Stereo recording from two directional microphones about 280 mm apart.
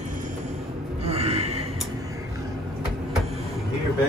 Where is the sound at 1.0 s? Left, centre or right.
Right.